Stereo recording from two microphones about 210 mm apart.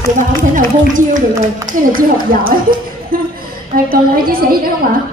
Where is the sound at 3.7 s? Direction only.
45° right (ahead or behind).